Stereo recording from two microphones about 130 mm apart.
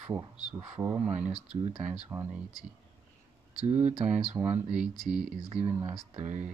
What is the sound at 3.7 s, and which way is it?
Speech, 60° right (ahead or behind).